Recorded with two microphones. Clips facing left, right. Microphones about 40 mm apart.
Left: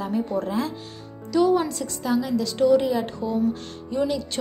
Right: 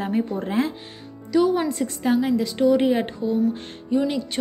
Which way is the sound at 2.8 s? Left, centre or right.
Right.